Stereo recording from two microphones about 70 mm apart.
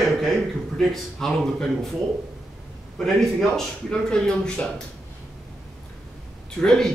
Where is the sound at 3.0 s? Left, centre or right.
Centre.